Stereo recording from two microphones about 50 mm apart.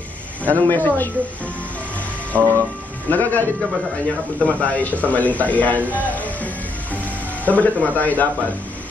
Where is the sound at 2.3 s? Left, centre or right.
Right.